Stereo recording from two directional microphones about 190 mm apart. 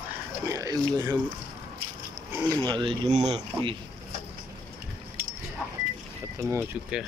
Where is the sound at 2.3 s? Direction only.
20° right (ahead or behind).